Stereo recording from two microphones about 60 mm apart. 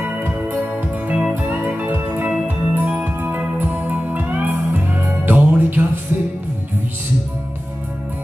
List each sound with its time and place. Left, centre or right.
0.2 s music: right